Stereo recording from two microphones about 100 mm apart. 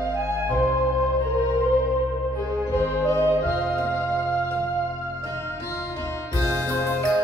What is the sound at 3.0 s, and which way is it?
Music, 25° left (ahead or behind).